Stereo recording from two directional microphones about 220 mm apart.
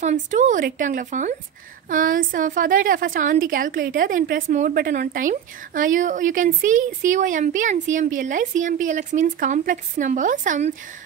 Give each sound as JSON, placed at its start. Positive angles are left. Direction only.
{"t": 0.0, "sound": "a woman's voice", "side_deg": -35}